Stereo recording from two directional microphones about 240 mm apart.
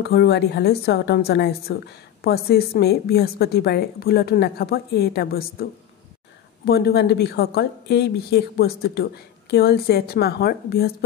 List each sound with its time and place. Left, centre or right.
0.0 s a woman's voice: left